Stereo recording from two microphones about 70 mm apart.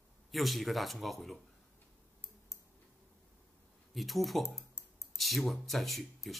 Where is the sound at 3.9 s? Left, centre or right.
Centre.